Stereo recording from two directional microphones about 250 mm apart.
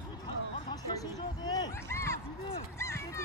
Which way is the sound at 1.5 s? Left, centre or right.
Centre.